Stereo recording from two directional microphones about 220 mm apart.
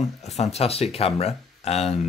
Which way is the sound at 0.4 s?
30° left (ahead or behind).